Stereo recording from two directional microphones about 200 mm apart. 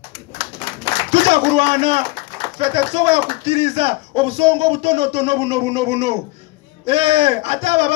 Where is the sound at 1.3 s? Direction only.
30° right (ahead or behind).